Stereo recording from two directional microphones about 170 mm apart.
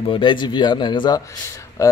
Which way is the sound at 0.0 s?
30° left (ahead or behind).